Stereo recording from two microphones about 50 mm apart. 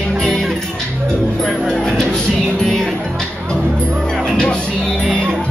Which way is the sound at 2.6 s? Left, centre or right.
Centre.